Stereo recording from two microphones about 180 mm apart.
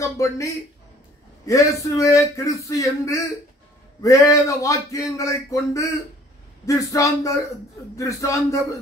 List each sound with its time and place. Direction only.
0.0 s speech: 15° left (ahead or behind)